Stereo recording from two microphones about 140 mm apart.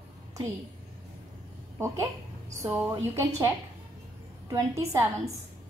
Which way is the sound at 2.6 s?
15° right (ahead or behind).